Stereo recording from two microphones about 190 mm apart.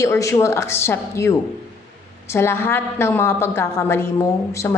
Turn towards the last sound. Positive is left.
turn(degrees=15)  # may be behind; listen again after turning